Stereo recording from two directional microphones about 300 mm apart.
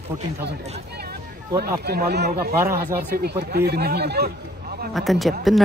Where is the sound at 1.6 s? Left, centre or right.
Right.